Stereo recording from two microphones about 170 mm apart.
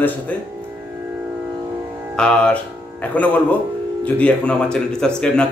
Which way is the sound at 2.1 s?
5° left (ahead or behind).